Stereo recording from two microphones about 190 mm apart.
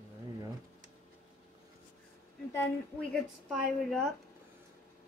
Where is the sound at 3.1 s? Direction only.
5° left (ahead or behind).